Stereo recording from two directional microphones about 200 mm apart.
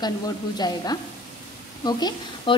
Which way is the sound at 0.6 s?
20° left (ahead or behind).